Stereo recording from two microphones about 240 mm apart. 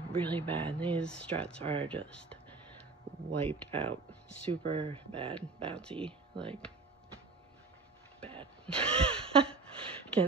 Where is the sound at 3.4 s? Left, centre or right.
Right.